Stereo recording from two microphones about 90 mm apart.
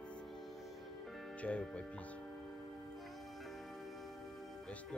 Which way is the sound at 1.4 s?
10° left (ahead or behind).